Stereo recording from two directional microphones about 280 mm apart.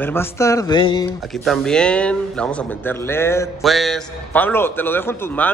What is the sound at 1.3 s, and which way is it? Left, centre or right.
Speech, centre.